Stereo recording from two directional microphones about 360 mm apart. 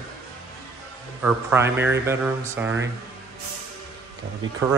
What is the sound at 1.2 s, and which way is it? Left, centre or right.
Speech, centre.